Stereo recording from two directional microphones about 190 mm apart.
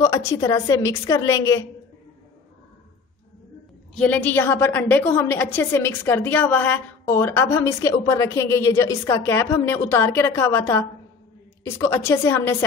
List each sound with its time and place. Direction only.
0.0 s a woman's voice: 15° left (ahead or behind)
3.9 s a woman's voice: 10° left (ahead or behind)